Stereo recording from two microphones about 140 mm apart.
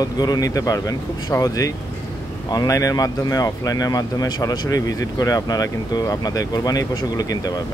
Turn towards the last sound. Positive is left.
turn(degrees=25)  # may be behind; listen again after turning